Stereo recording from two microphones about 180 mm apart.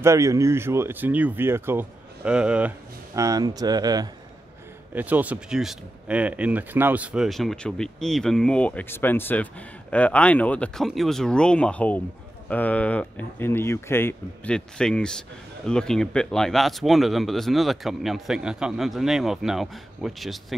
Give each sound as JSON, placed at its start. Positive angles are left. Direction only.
{"t": 0.0, "sound": "speech", "side_deg": -15}
{"t": 3.2, "sound": "speech", "side_deg": -20}
{"t": 4.9, "sound": "speech", "side_deg": -10}